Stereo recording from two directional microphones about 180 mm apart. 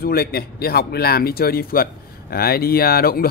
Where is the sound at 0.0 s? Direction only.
60° left (ahead or behind).